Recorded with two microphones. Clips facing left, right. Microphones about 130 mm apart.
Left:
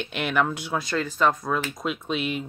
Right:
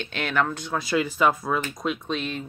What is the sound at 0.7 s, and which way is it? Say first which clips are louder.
Speech: right 3 dB; 5° right (ahead or behind).